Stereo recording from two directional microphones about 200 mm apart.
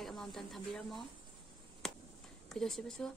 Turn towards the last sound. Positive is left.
turn(degrees=5)  # may be behind; listen again after turning